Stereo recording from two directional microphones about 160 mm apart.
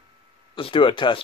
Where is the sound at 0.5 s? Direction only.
35° left (ahead or behind).